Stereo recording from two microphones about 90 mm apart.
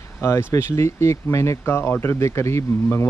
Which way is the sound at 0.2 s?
30° left (ahead or behind).